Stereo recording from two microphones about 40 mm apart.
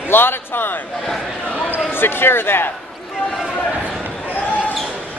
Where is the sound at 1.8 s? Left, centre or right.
Left.